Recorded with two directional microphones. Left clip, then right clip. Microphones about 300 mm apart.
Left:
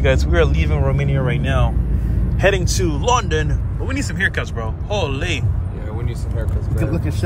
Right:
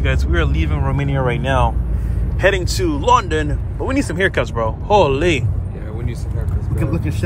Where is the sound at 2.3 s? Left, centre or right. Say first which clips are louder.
Right 1 dB; centre.